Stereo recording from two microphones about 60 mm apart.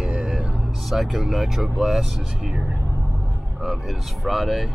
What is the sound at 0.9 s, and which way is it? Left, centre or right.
Speech, centre.